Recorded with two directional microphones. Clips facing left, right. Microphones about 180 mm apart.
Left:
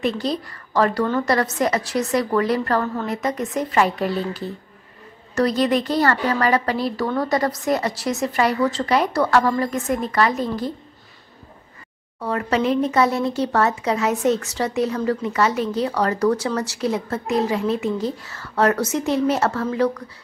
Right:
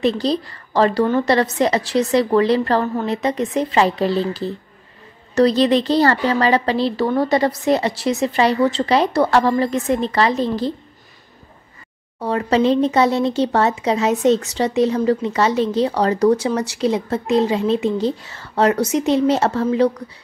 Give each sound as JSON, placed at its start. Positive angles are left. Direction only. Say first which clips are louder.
{"t": 0.0, "sound": "speech", "louder": "right 4 dB", "side_deg": -30}
{"t": 12.2, "sound": "speech", "louder": "right 4 dB", "side_deg": -25}